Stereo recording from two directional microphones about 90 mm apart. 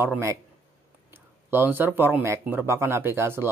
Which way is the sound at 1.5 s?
25° right (ahead or behind).